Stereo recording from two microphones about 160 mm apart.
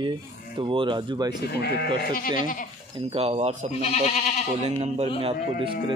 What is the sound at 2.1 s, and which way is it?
Speech, 60° left (ahead or behind).